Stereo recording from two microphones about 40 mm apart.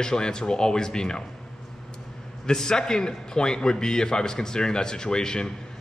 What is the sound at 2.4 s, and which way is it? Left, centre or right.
A man's voice, centre.